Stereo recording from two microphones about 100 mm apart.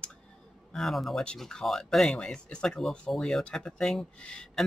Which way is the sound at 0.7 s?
Centre (ahead or behind).